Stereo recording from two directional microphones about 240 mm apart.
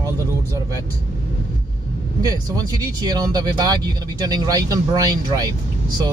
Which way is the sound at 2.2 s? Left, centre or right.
Centre.